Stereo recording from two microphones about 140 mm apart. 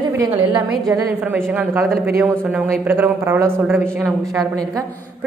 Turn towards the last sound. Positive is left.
turn(degrees=-15)  # may be behind; listen again after turning